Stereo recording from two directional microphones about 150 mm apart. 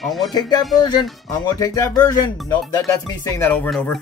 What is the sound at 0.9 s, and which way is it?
Speech, 25° left (ahead or behind).